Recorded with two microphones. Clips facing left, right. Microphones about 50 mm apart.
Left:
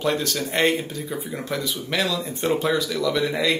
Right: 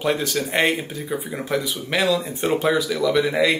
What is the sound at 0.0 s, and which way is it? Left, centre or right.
Speech, centre.